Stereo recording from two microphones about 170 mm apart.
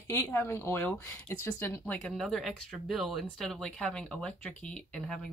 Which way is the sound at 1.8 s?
5° left (ahead or behind).